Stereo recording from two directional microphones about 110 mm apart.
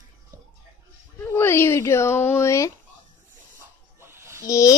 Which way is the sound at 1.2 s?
20° left (ahead or behind).